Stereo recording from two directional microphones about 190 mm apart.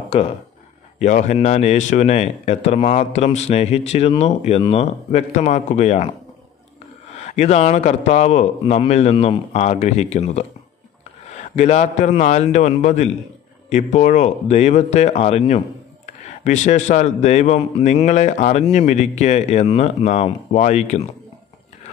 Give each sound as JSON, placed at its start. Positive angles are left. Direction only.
{"t": 0.9, "sound": "a man's voice", "side_deg": 40}
{"t": 7.2, "sound": "a man's voice", "side_deg": 35}
{"t": 11.5, "sound": "a man's voice", "side_deg": 35}